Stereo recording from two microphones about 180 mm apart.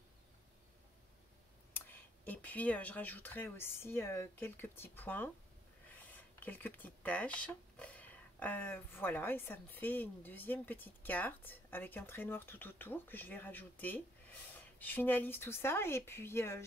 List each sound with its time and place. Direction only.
1.7 s speech: 10° left (ahead or behind)